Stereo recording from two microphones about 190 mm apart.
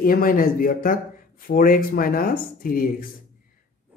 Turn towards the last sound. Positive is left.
turn(degrees=50)  # may be behind; listen again after turning